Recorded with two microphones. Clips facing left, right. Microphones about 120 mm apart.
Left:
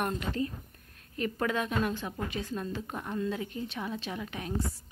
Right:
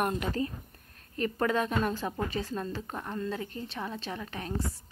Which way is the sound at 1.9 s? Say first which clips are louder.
Right 2 dB; 40° right (ahead or behind).